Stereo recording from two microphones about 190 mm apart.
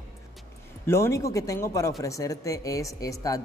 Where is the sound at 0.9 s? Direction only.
15° left (ahead or behind).